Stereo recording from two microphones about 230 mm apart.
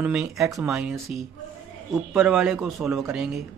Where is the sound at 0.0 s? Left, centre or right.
Centre.